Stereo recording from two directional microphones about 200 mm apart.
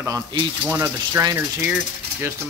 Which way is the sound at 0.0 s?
20° right (ahead or behind).